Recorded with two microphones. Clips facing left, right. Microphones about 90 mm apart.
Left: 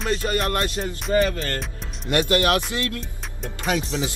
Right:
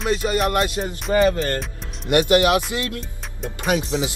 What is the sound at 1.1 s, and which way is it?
Speech, 30° right (ahead or behind).